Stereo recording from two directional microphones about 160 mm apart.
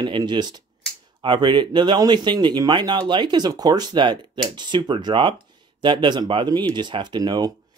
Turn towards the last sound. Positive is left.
turn(degrees=-25)  # may be behind; listen again after turning